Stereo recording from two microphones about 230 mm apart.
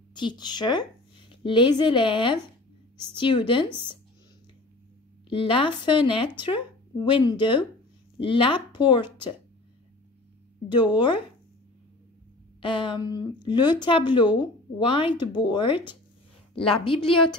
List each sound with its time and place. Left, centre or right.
0.1 s a woman's voice: centre
5.3 s speech: left
10.9 s speech: centre
12.6 s speech: left